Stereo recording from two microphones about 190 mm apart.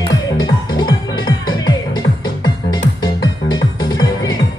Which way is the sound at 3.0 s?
20° left (ahead or behind).